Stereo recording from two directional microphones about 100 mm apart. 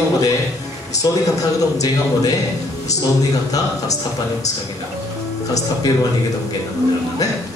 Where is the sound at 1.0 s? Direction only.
35° left (ahead or behind).